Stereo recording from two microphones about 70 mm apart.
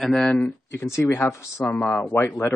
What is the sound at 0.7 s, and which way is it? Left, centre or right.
Speech, left.